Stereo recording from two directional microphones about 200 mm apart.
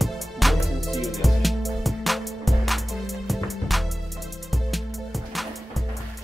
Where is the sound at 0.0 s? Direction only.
Centre (ahead or behind).